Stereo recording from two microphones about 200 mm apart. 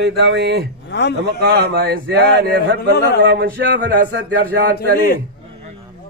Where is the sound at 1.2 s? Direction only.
55° right (ahead or behind).